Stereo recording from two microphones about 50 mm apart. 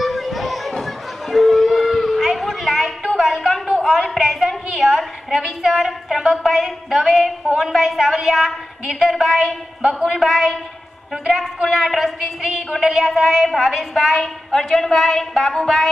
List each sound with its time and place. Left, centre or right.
0.0 s children playing: centre
3.2 s a sound: centre
7.5 s a woman's voice: centre
14.2 s a woman's voice: centre